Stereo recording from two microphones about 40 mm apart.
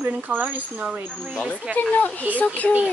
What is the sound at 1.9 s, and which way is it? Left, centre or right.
Speech, left.